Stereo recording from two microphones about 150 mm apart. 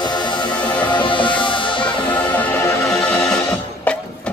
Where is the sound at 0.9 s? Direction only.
35° left (ahead or behind).